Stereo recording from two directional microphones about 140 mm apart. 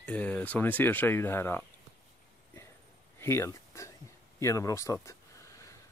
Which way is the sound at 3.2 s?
20° left (ahead or behind).